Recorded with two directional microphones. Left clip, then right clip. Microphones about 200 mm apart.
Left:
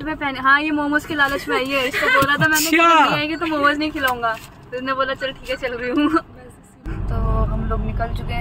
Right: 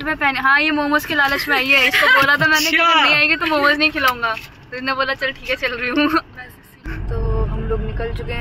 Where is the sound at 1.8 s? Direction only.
5° left (ahead or behind).